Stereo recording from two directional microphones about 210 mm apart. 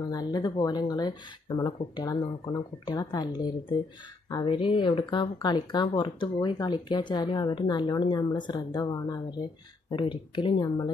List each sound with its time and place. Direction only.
0.1 s speech: 20° left (ahead or behind)